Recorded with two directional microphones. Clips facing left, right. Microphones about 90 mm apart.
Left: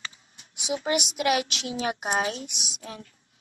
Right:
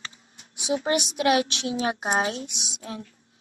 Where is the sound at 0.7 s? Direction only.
35° right (ahead or behind).